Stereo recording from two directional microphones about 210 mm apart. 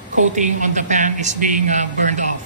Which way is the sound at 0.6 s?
35° right (ahead or behind).